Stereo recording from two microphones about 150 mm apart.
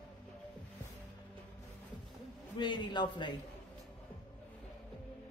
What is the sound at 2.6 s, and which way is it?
Speech, 30° left (ahead or behind).